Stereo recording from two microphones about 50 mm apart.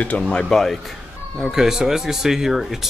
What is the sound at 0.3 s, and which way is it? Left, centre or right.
Speech, centre.